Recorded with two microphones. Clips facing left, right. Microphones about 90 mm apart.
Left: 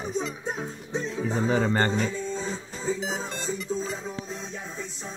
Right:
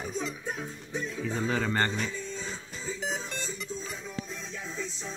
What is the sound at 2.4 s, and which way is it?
Music, 45° left (ahead or behind).